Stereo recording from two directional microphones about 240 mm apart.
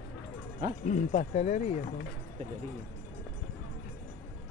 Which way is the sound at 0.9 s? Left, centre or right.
Left.